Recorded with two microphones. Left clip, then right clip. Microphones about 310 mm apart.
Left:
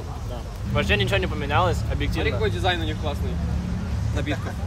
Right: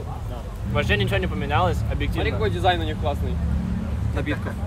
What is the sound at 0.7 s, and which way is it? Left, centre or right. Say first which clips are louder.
Speech: left 1 dB; centre.